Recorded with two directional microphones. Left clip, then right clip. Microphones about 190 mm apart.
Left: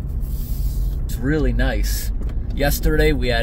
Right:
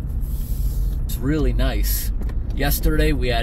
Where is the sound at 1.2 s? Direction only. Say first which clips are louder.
Left 2 dB; 20° left (ahead or behind).